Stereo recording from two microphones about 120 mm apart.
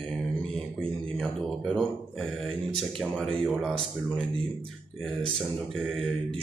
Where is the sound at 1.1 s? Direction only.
Centre (ahead or behind).